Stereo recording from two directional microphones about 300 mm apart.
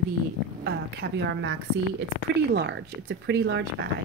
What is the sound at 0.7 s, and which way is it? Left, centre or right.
Speech, right.